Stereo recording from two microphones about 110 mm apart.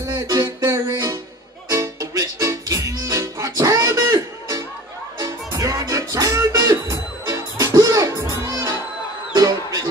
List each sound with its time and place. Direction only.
0.0 s music: 30° right (ahead or behind)